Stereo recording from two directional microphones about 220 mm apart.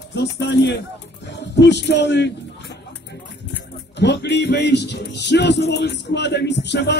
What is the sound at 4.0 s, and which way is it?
Music, 50° left (ahead or behind).